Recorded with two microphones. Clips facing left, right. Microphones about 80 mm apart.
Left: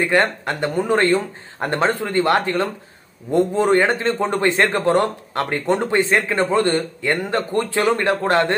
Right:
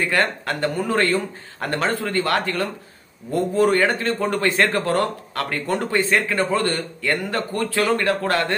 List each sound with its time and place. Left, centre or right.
0.0 s a man's voice: left